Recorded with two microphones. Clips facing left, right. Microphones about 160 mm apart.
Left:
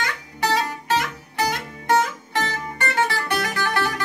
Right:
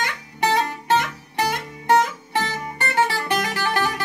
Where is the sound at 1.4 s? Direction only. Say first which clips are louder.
Right 1 dB; 15° right (ahead or behind).